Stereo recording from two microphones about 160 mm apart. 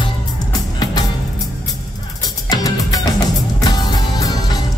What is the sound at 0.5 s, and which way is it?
Music, 25° left (ahead or behind).